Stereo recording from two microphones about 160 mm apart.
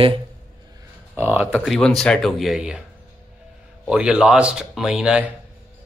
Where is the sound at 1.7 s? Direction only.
5° left (ahead or behind).